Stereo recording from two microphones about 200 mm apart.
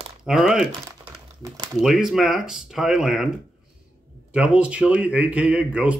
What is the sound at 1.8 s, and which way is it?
Speech, centre (ahead or behind).